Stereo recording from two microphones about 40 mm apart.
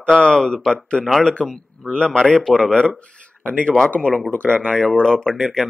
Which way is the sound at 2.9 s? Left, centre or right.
Left.